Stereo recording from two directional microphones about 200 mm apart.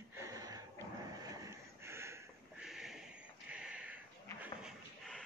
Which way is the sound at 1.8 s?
15° right (ahead or behind).